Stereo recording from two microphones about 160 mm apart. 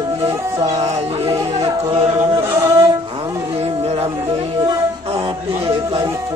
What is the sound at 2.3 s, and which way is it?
Music, 15° right (ahead or behind).